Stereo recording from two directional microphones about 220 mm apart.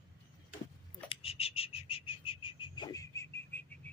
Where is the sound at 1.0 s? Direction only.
25° left (ahead or behind).